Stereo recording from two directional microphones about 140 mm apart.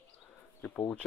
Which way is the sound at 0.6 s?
15° left (ahead or behind).